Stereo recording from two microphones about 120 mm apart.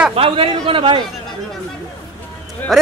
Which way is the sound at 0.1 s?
50° right (ahead or behind).